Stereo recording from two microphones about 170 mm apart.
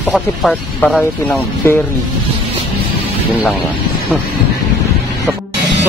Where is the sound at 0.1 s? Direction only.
5° left (ahead or behind).